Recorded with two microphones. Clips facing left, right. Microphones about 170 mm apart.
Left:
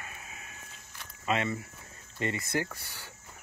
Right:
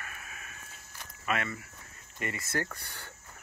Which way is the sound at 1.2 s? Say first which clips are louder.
Left 3 dB; 25° left (ahead or behind).